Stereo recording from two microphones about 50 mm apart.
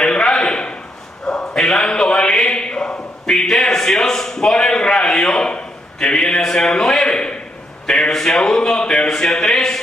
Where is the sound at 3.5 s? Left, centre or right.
Centre.